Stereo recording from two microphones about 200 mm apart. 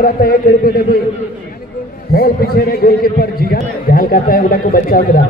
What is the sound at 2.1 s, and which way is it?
A man's voice, 50° left (ahead or behind).